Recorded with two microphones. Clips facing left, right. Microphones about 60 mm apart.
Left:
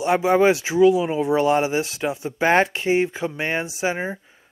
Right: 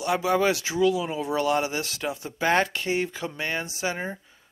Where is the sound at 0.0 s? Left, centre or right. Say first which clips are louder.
Left 6 dB; left.